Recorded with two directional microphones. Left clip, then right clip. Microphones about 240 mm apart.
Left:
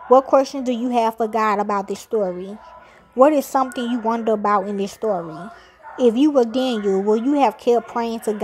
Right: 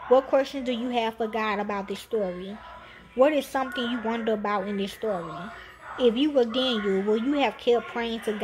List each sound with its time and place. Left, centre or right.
0.1 s a woman's voice: left